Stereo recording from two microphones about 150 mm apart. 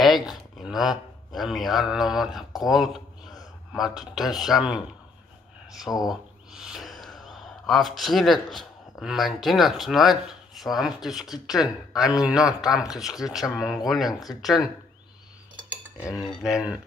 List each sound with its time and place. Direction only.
0.0 s speech: centre (ahead or behind)
16.3 s speech: 5° right (ahead or behind)